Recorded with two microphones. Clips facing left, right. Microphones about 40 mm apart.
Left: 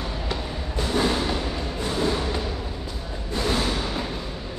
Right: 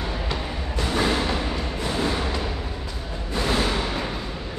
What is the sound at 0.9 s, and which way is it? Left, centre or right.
Music, right.